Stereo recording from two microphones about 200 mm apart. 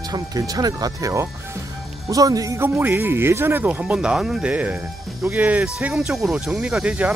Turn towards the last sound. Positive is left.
turn(degrees=-5)  # may be behind; listen again after turning